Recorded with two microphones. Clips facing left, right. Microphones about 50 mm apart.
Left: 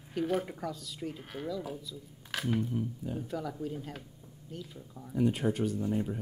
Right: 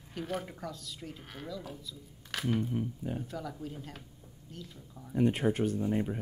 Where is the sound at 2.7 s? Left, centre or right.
Right.